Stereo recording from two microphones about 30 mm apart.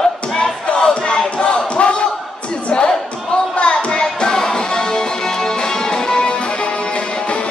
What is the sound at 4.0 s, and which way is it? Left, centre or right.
Music, left.